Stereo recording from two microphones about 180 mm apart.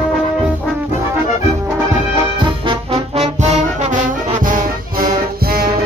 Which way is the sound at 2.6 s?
30° right (ahead or behind).